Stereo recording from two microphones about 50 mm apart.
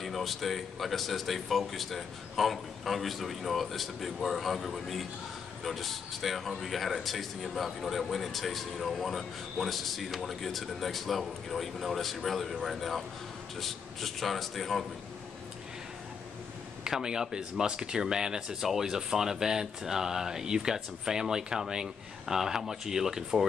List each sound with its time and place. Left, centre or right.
0.0 s speech: centre
16.8 s speech: centre